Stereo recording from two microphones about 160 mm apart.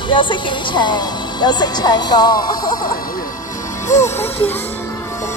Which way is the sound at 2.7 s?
60° left (ahead or behind).